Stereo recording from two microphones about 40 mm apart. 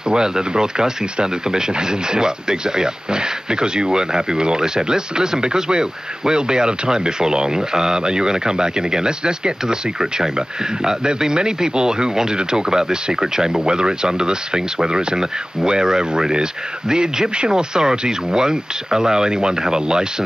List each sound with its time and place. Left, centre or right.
0.1 s speech: right